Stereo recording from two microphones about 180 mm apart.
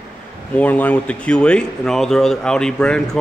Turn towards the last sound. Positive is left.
turn(degrees=5)  # may be behind; listen again after turning